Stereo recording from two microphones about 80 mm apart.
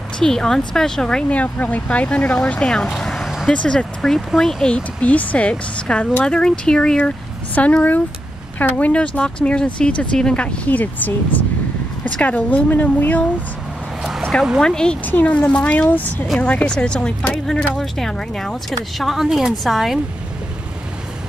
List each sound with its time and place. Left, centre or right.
0.2 s speech: centre
14.6 s speech: centre
15.0 s speech: centre